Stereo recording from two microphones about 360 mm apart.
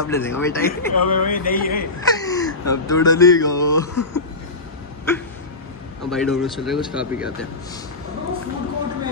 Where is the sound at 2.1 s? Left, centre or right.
Centre.